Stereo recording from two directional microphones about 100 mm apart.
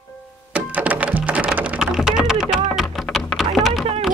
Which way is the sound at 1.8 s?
5° right (ahead or behind).